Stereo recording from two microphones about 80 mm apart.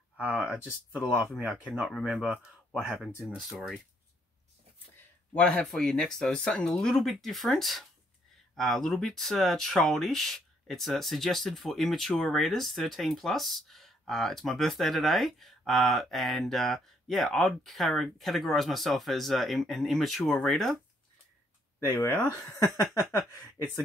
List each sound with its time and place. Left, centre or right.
0.2 s speech: centre
1.3 s speech: centre
5.3 s speech: centre
21.7 s speech: left